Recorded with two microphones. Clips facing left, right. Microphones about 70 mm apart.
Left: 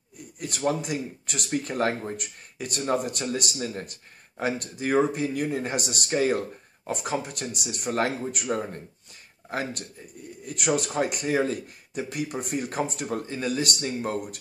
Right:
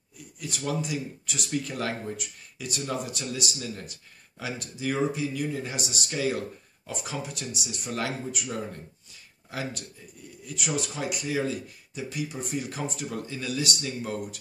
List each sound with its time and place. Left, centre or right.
0.4 s speech: left